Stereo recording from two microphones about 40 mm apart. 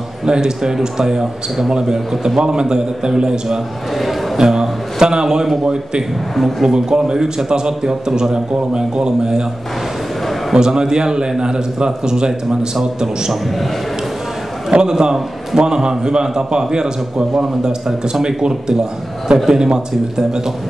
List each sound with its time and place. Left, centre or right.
0.2 s speech: centre
10.5 s speech: centre
14.7 s a man's voice: centre